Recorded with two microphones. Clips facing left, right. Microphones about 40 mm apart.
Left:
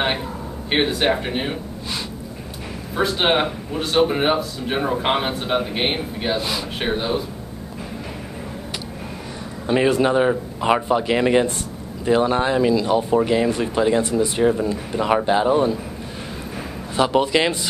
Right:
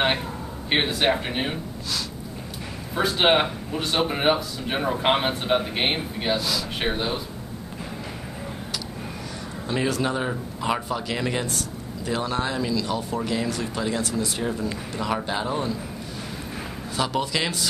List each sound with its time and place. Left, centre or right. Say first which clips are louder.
0.0 s speech: left 1 dB; centre
3.0 s speech: left 1 dB; centre
9.7 s speech: left 8 dB; left
16.9 s speech: left 8 dB; left